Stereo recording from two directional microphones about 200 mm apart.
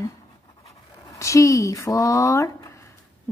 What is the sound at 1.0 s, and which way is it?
Speech, 15° left (ahead or behind).